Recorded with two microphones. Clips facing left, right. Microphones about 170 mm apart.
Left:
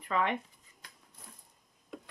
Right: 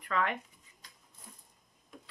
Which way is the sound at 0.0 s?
20° left (ahead or behind).